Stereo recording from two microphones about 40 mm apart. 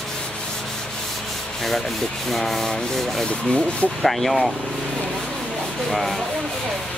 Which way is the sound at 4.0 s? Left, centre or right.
Centre.